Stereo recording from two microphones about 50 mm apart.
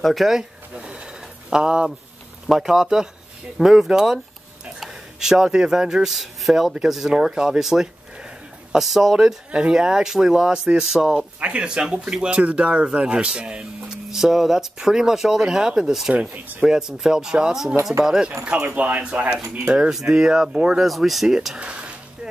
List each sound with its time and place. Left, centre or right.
0.0 s speech: centre
0.4 s a sound: centre
2.4 s speech: centre
6.1 s speech: centre; by 13.8 s right
13.8 s speech: centre
18.4 s speech: right
19.9 s speech: centre
20.8 s speech: centre
21.5 s a sound: right